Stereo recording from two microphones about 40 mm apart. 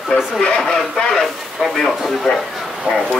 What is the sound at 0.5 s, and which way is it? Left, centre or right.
Radio, centre.